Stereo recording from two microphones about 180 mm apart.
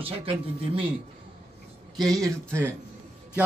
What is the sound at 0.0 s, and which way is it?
Speech, 30° right (ahead or behind).